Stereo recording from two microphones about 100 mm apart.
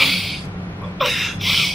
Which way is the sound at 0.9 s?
Centre (ahead or behind).